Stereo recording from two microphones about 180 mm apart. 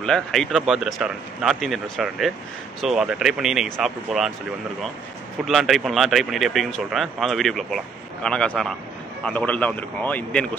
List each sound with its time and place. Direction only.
0.0 s speech: 5° left (ahead or behind)
5.4 s a man's voice: centre (ahead or behind)